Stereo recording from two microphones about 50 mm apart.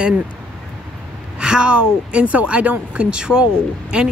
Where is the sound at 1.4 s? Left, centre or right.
Centre.